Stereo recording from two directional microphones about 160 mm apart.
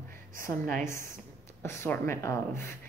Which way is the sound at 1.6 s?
15° left (ahead or behind).